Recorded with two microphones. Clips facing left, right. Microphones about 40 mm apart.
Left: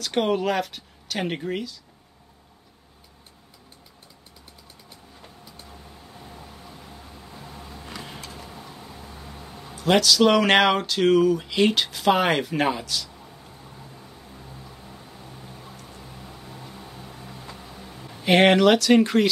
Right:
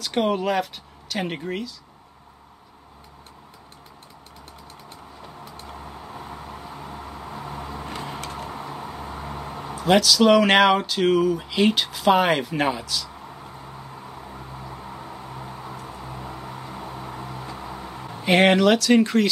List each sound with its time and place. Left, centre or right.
0.0 s speech: centre
5.4 s vehicle: right
8.2 s a sound: right
9.8 s speech: centre
13.1 s vehicle: right
18.2 s speech: centre